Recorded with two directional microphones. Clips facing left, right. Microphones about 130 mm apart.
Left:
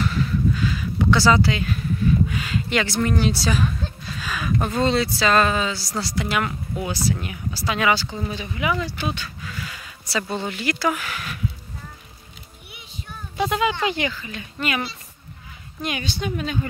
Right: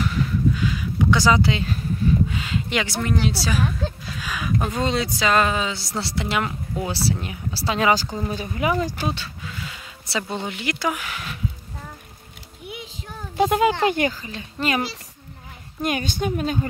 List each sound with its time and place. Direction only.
0.0 s a sound: 15° right (ahead or behind)
3.0 s a woman's voice: 5° right (ahead or behind); by 11.3 s 20° right (ahead or behind)
13.4 s speech: 45° right (ahead or behind)
15.8 s speech: 45° right (ahead or behind)